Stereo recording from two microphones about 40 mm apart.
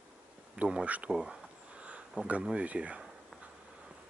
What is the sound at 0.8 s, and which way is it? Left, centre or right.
Speech, right.